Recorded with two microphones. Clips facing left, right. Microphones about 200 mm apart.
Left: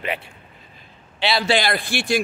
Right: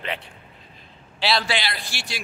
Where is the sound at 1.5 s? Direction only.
50° left (ahead or behind).